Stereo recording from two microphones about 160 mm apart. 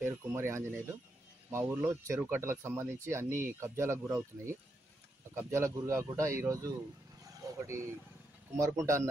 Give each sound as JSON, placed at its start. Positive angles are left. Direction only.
{"t": 0.0, "sound": "speech", "side_deg": -15}
{"t": 7.3, "sound": "vehicle", "side_deg": -20}
{"t": 8.5, "sound": "speech", "side_deg": -20}